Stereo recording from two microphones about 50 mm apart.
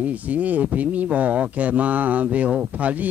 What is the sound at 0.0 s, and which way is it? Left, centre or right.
Speech, right.